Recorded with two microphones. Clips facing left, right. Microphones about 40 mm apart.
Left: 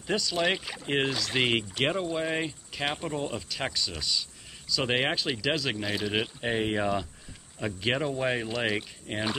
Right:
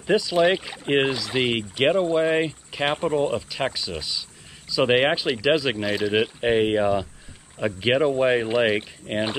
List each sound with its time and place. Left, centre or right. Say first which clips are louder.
0.0 s speech: right 8 dB; centre
1.1 s speech: right 3 dB; centre
6.2 s speech: right 8 dB; right
6.8 s speech: right 7 dB; centre
7.5 s speech: right 7 dB; centre